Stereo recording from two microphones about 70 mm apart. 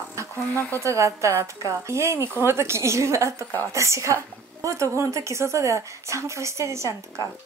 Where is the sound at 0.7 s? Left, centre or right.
Right.